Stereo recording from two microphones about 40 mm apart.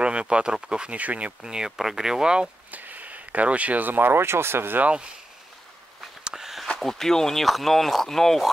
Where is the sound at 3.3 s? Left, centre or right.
Right.